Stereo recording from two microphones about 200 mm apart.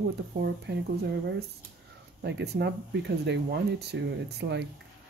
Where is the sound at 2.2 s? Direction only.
60° right (ahead or behind).